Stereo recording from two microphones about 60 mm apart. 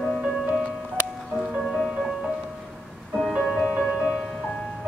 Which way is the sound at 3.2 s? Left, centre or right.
Centre.